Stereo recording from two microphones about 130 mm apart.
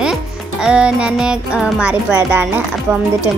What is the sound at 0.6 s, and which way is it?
Speech, 5° right (ahead or behind).